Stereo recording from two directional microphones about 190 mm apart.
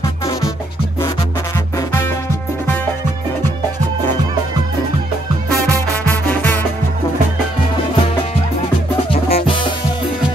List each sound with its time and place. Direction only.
5.7 s music: 10° left (ahead or behind)
9.1 s music: 30° left (ahead or behind)